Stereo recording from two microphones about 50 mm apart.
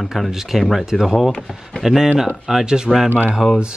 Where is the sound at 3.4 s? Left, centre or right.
Left.